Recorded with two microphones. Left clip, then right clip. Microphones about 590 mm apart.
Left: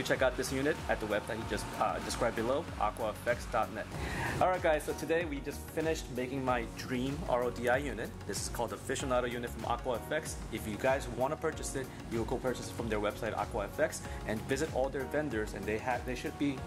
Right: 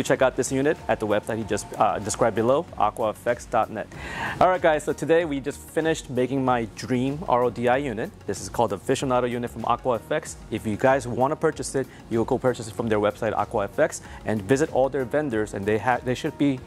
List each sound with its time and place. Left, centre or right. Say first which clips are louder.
0.0 s speech: right 9 dB; right